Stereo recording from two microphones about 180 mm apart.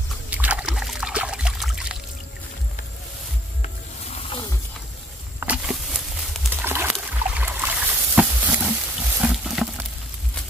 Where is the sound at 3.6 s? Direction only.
35° left (ahead or behind).